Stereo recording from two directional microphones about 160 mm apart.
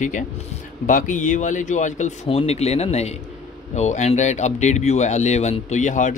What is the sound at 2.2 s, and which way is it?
Speech, 40° left (ahead or behind).